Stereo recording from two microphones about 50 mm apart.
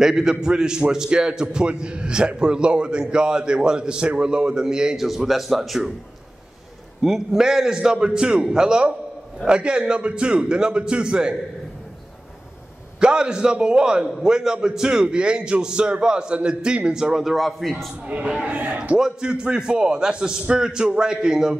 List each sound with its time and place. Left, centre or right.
0.0 s a man's voice: centre
4.9 s speech: centre
7.0 s a man's voice: centre
13.0 s a man's voice: centre
17.2 s speech: centre
18.0 s a man's voice: right
18.4 s a man's voice: right
18.9 s a man's voice: centre